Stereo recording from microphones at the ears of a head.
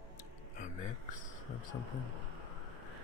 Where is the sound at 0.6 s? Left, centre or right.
Left.